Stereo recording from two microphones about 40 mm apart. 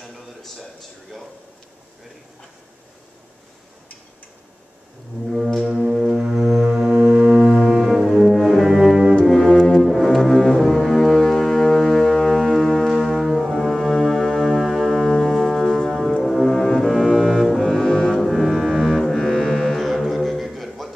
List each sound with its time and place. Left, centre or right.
5.6 s music: centre
6.6 s music: right
7.4 s cello: right
8.0 s music: centre
9.5 s music: centre
9.9 s music: centre
13.0 s brass instrument: centre
13.7 s music: centre
14.5 s music: centre
18.1 s music: centre